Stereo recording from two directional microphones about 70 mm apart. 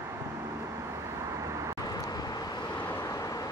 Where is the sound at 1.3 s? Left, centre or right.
Right.